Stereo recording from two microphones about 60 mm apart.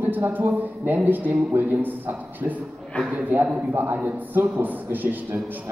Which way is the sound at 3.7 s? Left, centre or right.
Right.